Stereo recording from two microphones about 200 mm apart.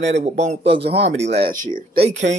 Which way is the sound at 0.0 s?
35° right (ahead or behind).